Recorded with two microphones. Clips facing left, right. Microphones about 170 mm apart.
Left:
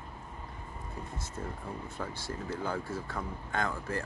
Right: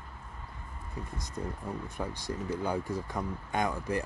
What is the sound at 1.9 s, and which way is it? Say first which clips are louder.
Speech: right 2 dB; 15° right (ahead or behind).